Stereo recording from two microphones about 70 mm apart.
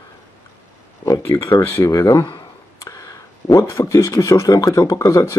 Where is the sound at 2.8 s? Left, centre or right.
Left.